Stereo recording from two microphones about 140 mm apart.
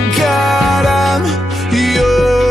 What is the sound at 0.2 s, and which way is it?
Music, centre (ahead or behind).